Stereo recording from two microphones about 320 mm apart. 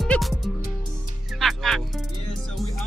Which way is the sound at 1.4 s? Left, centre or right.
Centre.